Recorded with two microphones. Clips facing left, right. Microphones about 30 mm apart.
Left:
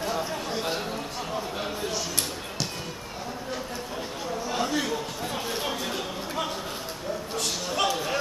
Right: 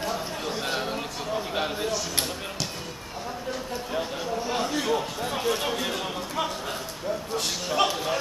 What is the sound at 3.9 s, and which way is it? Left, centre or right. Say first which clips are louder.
Chatter: right 4 dB; centre.